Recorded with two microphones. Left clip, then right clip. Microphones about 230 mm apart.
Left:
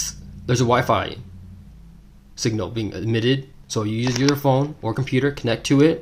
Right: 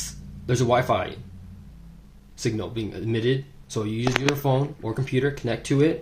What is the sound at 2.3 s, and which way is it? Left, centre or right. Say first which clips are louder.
Speech: left 4 dB; left.